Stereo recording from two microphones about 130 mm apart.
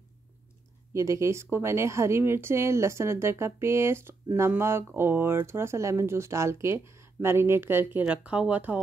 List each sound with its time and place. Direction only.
0.9 s speech: 25° right (ahead or behind)